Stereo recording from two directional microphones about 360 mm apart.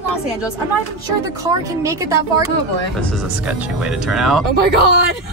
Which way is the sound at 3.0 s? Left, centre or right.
Centre.